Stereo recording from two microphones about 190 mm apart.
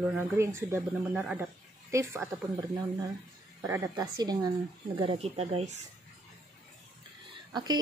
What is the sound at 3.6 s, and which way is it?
Speech, 15° right (ahead or behind).